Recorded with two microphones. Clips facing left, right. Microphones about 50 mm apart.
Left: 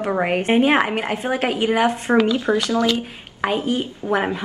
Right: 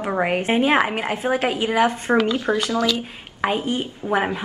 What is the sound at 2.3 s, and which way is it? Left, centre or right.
Speech, right.